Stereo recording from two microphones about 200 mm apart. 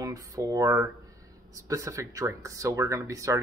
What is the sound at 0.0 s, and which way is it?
Speech, 15° right (ahead or behind).